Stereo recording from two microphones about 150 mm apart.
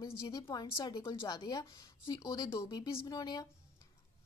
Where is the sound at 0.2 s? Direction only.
25° left (ahead or behind).